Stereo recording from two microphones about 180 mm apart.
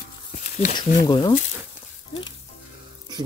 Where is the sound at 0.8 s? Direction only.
25° left (ahead or behind).